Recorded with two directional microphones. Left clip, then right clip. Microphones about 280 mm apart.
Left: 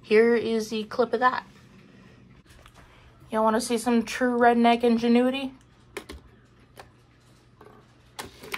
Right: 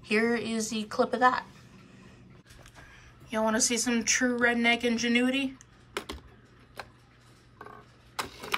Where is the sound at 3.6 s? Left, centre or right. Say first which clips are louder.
Left 3 dB; centre.